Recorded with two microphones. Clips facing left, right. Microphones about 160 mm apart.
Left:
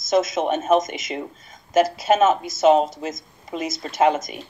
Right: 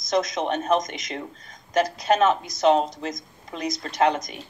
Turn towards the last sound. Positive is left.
turn(degrees=5)  # may be behind; listen again after turning